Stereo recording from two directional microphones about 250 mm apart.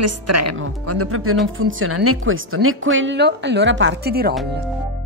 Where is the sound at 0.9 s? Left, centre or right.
Right.